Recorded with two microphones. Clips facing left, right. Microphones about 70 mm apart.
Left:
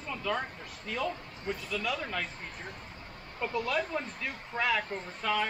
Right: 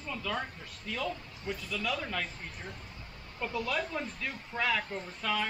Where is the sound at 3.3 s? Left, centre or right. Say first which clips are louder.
Left 2 dB; centre.